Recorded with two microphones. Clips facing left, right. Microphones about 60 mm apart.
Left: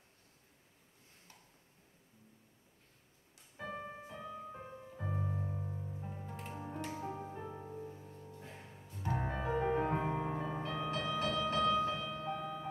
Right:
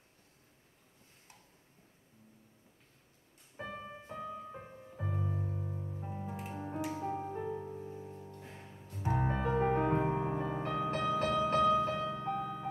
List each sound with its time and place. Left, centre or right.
4.1 s music: right
5.0 s music: centre
9.5 s music: right
10.1 s music: centre
10.6 s music: right
10.9 s music: right